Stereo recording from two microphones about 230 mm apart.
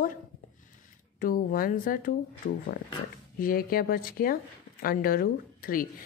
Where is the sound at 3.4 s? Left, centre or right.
Left.